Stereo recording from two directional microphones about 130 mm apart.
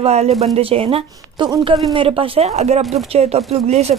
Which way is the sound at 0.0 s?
55° right (ahead or behind).